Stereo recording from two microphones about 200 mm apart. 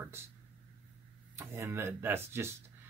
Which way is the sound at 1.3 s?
15° right (ahead or behind).